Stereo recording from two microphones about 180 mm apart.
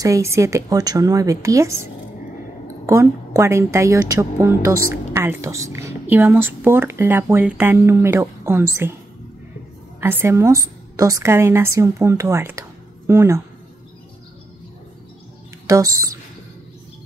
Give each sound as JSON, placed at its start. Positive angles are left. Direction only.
{"t": 0.0, "sound": "a woman's voice", "side_deg": -15}
{"t": 2.9, "sound": "a woman's voice", "side_deg": -15}
{"t": 9.9, "sound": "a woman's voice", "side_deg": -15}
{"t": 15.6, "sound": "a woman's voice", "side_deg": -20}